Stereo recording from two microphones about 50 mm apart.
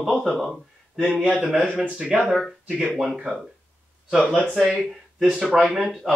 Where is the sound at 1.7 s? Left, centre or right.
Right.